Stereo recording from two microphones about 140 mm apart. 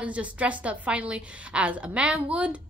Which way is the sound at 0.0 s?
10° right (ahead or behind).